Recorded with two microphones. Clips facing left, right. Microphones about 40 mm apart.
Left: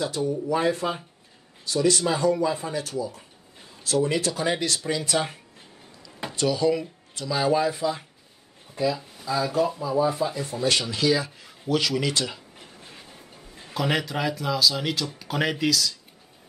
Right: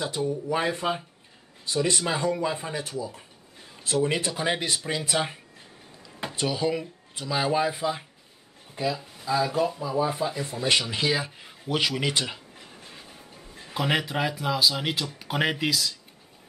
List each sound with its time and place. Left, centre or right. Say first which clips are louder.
0.0 s speech: left 2 dB; right
13.7 s speech: even; centre